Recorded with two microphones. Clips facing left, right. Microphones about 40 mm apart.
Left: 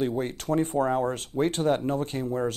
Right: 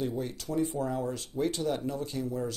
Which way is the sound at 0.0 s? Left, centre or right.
Left.